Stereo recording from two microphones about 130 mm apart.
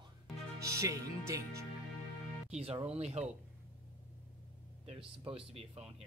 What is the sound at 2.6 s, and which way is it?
Speech, 50° right (ahead or behind).